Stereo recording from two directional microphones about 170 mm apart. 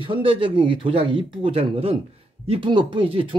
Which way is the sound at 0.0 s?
30° right (ahead or behind).